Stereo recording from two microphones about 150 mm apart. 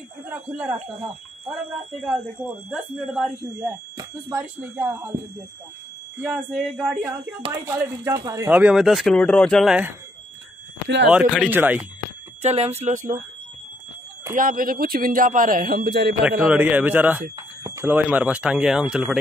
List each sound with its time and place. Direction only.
0.3 s speech: 10° right (ahead or behind)
2.7 s speech: centre (ahead or behind)
3.9 s speech: 15° right (ahead or behind)
6.2 s speech: 5° right (ahead or behind)
11.1 s speech: 5° right (ahead or behind)
12.4 s speech: 45° right (ahead or behind)
14.3 s a man's voice: 65° right (ahead or behind); by 16.2 s 90° right
16.2 s speech: 5° right (ahead or behind)